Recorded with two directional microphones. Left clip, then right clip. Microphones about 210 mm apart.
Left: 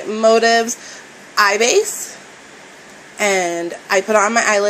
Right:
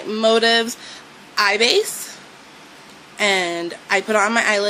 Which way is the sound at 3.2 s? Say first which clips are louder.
Left 2 dB; 20° right (ahead or behind).